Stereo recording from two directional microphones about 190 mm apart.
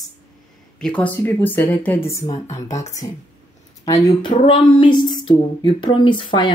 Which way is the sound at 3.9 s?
20° left (ahead or behind).